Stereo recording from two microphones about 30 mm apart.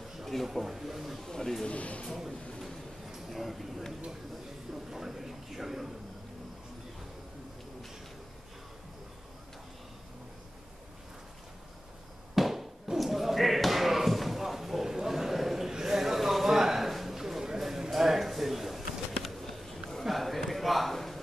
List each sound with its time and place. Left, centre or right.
0.2 s a sound: centre
0.7 s a man's voice: centre
1.2 s speech: centre
1.7 s speech: left
2.6 s train: centre
3.3 s a man's voice: centre
4.9 s a man's voice: centre
12.4 s a sound: centre
12.9 s slam: centre
14.9 s a sound: centre